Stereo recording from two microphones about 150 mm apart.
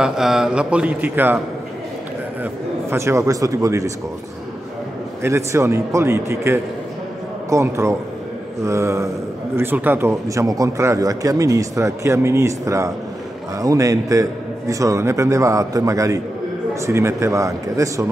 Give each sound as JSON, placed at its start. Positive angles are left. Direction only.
{"t": 0.0, "sound": "a man's voice", "side_deg": -5}
{"t": 2.9, "sound": "speech", "side_deg": -20}
{"t": 5.2, "sound": "a man's voice", "side_deg": -20}